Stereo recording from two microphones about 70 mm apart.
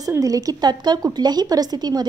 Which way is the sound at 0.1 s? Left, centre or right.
Right.